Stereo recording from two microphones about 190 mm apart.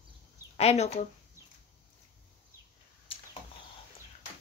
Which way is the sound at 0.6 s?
35° left (ahead or behind).